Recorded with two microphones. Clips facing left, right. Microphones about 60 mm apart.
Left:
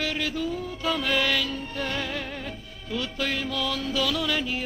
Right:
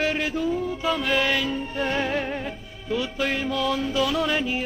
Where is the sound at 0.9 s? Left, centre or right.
Centre.